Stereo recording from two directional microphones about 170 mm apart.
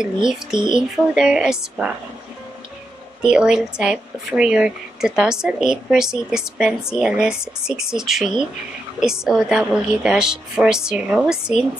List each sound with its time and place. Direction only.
0.6 s speech: 30° right (ahead or behind)
0.9 s speech: 5° right (ahead or behind)
3.2 s speech: 5° right (ahead or behind)